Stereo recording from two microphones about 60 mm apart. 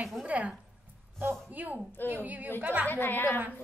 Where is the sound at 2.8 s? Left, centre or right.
Left.